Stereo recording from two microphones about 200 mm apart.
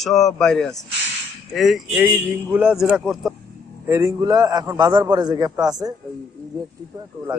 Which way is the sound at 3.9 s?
15° right (ahead or behind).